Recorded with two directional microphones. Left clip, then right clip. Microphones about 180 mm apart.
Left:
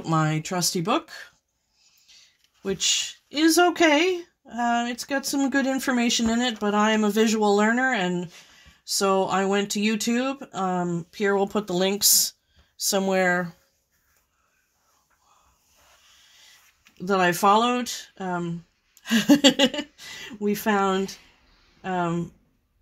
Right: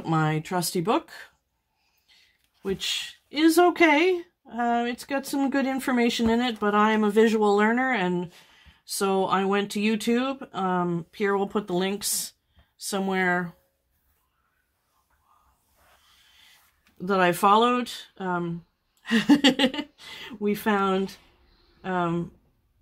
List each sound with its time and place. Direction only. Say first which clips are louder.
0.0 s speech: left 1 dB; 35° left (ahead or behind)
0.9 s speech: left 1 dB; 15° left (ahead or behind)
2.6 s speech: left 4 dB; 40° left (ahead or behind)
17.0 s speech: left 1 dB; 35° left (ahead or behind)